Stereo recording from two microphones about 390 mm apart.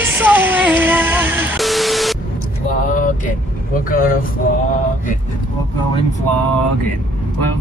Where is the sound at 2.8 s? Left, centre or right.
Centre.